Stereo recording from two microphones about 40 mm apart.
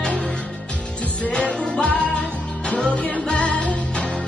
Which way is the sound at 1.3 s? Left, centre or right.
Left.